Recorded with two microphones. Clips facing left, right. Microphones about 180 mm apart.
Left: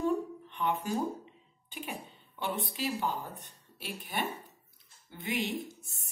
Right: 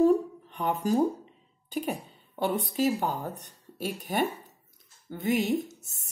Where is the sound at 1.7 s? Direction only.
40° right (ahead or behind).